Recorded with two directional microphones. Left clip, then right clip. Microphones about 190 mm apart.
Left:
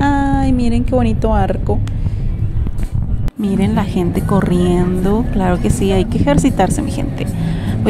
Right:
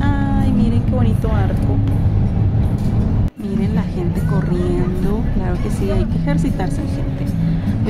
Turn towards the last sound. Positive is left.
turn(degrees=40)  # may be behind; listen again after turning